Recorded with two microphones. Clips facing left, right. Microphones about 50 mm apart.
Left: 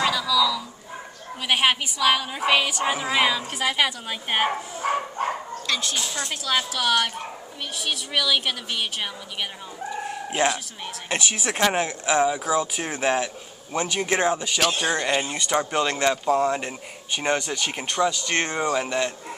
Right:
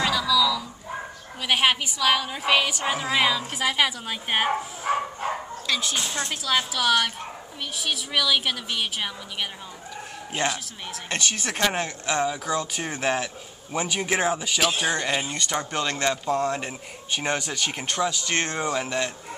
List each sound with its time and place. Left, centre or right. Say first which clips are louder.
0.0 s a sound: even; centre
1.5 s speech: even; centre
5.7 s speech: even; centre
5.9 s speech: right 1 dB; right
6.4 s speech: even; centre